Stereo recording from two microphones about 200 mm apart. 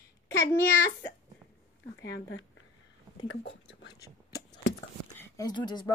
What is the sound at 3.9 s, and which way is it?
Whispering, 20° left (ahead or behind).